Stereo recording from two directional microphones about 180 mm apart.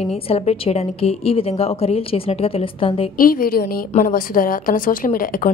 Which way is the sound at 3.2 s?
55° left (ahead or behind).